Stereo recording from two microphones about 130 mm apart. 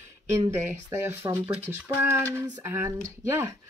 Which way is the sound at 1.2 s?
35° right (ahead or behind).